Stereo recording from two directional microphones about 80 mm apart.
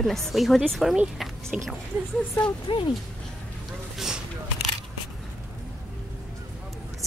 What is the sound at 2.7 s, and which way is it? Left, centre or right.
Speech, left.